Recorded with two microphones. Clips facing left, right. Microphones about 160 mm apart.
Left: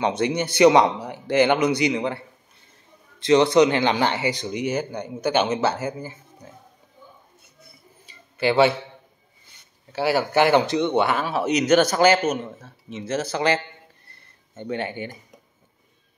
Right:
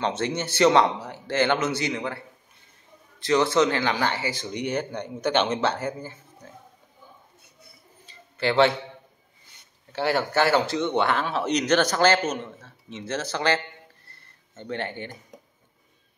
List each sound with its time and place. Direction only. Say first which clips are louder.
0.0 s speech: left 4 dB; 15° left (ahead or behind)
3.2 s speech: left 5 dB; 20° left (ahead or behind)
4.6 s speech: left 2 dB; 5° left (ahead or behind)
8.1 s a sound: left 4 dB; 10° left (ahead or behind)
9.9 s speech: left 3 dB; 10° left (ahead or behind)